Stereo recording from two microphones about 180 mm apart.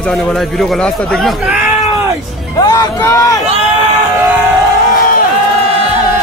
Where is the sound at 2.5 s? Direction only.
20° left (ahead or behind).